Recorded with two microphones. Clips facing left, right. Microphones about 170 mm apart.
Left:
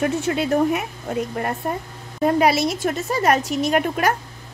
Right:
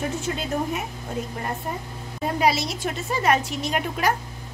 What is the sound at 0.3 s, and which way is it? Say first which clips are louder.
Speech: left 6 dB; 70° left (ahead or behind).